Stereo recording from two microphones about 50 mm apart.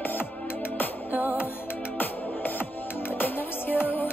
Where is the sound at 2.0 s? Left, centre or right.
Left.